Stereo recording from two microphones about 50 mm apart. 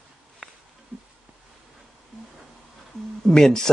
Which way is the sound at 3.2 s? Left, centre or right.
Centre.